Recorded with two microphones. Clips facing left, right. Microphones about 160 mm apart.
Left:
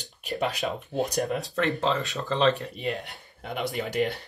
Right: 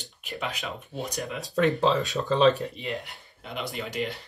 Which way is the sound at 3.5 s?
45° left (ahead or behind).